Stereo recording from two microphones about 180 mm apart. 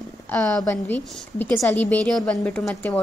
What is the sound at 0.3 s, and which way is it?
A woman's voice, 5° left (ahead or behind).